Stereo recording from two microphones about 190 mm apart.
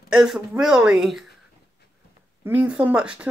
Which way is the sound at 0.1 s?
5° right (ahead or behind).